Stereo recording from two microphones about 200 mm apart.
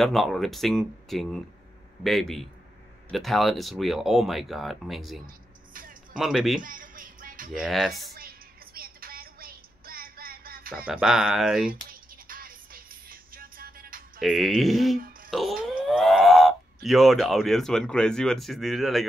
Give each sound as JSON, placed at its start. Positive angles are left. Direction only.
{"t": 0.0, "sound": "speech", "side_deg": 0}
{"t": 5.7, "sound": "music", "side_deg": -45}
{"t": 6.1, "sound": "speech", "side_deg": 0}
{"t": 6.6, "sound": "music", "side_deg": -40}
{"t": 7.5, "sound": "speech", "side_deg": 0}
{"t": 8.1, "sound": "music", "side_deg": -45}
{"t": 10.9, "sound": "speech", "side_deg": -5}
{"t": 11.7, "sound": "music", "side_deg": -45}
{"t": 14.2, "sound": "speech", "side_deg": 0}
{"t": 15.2, "sound": "music", "side_deg": 0}
{"t": 15.6, "sound": "speech", "side_deg": 0}